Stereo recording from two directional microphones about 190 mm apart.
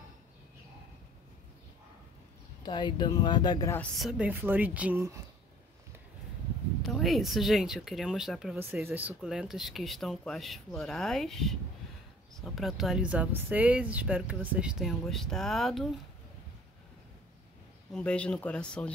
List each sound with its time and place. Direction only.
2.6 s speech: 25° left (ahead or behind)
3.8 s speech: centre (ahead or behind)
6.8 s a woman's voice: centre (ahead or behind)
17.9 s a woman's voice: 5° left (ahead or behind)